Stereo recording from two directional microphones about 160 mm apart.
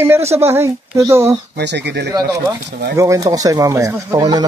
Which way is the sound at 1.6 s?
90° right.